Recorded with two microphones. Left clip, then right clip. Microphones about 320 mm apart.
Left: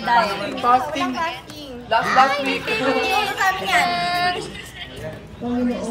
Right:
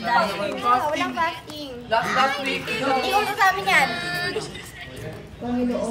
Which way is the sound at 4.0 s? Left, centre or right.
Centre.